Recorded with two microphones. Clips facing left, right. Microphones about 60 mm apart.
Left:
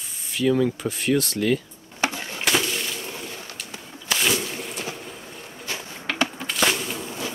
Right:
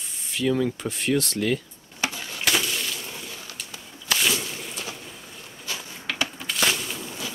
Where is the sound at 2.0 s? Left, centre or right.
Left.